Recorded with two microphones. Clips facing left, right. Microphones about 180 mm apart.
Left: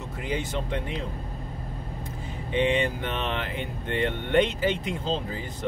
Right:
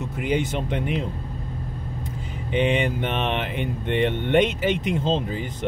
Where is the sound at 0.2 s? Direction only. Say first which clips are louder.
Right 6 dB; 20° right (ahead or behind).